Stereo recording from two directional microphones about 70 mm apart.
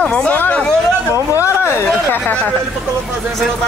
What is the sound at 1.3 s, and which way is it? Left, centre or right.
Speech, left.